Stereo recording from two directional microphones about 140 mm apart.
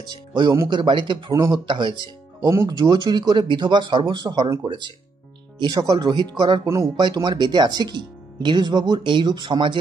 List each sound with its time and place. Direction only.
0.0 s speech: 30° right (ahead or behind)
2.4 s speech: 25° right (ahead or behind)